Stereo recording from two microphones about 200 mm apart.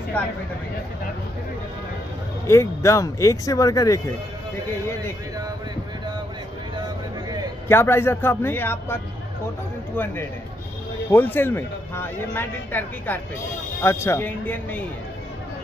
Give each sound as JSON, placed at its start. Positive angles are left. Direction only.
{"t": 0.2, "sound": "speech", "side_deg": 10}
{"t": 2.4, "sound": "speech", "side_deg": 15}
{"t": 7.6, "sound": "speech", "side_deg": 10}
{"t": 11.1, "sound": "speech", "side_deg": 10}